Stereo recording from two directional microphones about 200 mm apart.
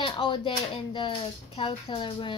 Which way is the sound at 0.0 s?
25° left (ahead or behind).